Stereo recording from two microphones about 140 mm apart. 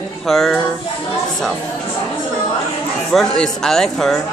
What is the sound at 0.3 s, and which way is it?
Speech, 5° left (ahead or behind).